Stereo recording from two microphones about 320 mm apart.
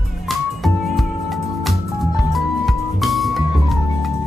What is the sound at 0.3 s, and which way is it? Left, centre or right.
Music, centre.